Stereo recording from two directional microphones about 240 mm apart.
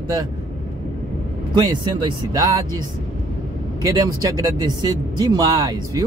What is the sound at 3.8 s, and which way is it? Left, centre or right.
Speech, centre.